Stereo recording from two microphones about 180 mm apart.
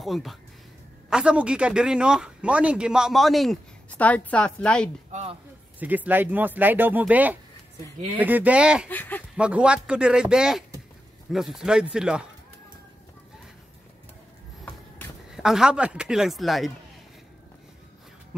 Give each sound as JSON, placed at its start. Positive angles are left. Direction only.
{"t": 0.0, "sound": "speech", "side_deg": 0}
{"t": 5.1, "sound": "speech", "side_deg": -35}
{"t": 5.8, "sound": "speech", "side_deg": -10}
{"t": 8.8, "sound": "speech", "side_deg": 10}
{"t": 9.4, "sound": "speech", "side_deg": -5}
{"t": 14.6, "sound": "a sound", "side_deg": 0}